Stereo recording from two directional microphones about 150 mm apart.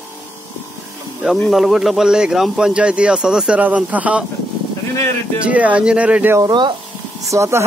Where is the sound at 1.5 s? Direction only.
Centre (ahead or behind).